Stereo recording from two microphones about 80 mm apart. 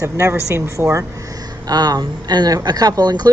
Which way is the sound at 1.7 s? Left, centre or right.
Right.